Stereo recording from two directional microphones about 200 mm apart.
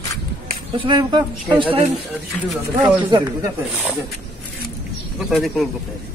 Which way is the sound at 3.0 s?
20° right (ahead or behind).